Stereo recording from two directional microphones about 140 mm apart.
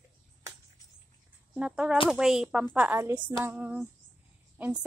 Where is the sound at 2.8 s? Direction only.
15° right (ahead or behind).